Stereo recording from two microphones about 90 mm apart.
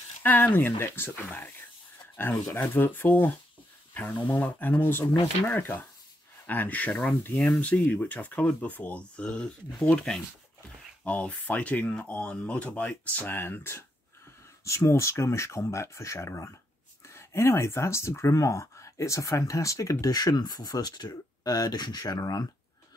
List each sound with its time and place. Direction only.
0.2 s speech: 20° left (ahead or behind); by 22.5 s 45° left (ahead or behind)